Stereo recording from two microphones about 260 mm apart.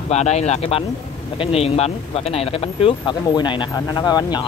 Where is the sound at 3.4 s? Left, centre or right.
Centre.